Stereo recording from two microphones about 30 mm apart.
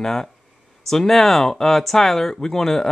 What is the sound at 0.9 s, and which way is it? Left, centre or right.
Speech, centre.